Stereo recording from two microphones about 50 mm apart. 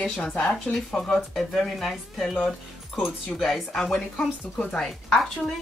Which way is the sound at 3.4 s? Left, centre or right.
Centre.